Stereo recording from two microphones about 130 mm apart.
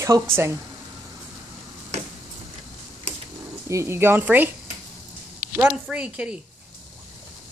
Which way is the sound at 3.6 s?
20° right (ahead or behind).